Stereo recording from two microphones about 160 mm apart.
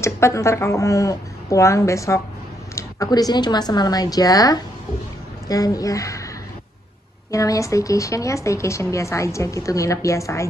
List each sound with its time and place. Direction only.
0.0 s speech: 15° left (ahead or behind)
7.2 s speech: 20° left (ahead or behind)